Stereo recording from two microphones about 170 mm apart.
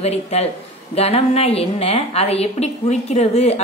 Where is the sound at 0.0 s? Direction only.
40° left (ahead or behind).